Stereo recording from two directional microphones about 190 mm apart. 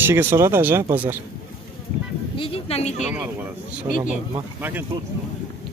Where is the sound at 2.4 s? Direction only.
30° left (ahead or behind).